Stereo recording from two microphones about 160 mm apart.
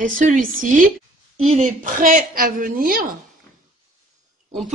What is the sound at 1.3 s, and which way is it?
A woman's voice, 40° right (ahead or behind).